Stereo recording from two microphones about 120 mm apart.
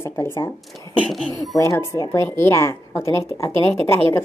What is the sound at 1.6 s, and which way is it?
A woman's voice, 25° left (ahead or behind).